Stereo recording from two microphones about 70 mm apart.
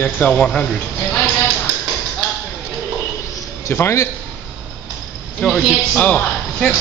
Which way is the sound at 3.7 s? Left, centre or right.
Left.